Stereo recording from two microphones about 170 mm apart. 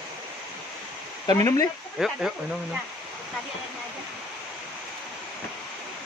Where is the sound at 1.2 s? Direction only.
20° left (ahead or behind).